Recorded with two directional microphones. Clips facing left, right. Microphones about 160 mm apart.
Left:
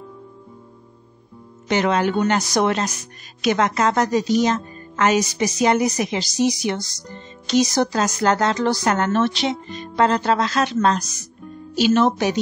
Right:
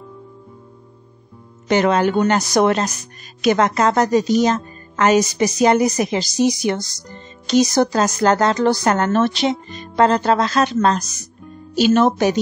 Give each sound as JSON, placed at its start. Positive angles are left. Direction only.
{"t": 1.7, "sound": "a woman's voice", "side_deg": -45}